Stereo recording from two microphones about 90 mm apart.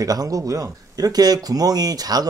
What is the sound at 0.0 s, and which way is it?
Speech, 40° right (ahead or behind).